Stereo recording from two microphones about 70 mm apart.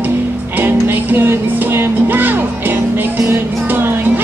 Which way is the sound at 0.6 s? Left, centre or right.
Right.